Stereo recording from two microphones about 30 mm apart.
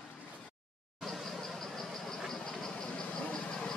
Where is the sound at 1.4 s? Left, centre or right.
Centre.